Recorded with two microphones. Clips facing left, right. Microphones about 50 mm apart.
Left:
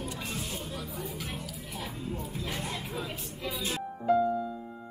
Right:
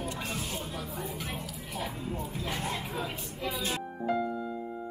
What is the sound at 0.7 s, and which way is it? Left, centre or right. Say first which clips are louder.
Speech: right 1 dB; right.